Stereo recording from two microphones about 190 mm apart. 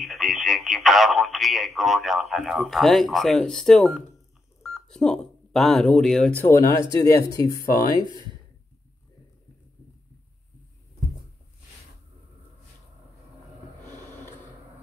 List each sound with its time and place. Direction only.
0.0 s speech: centre (ahead or behind); by 8.1 s 20° left (ahead or behind)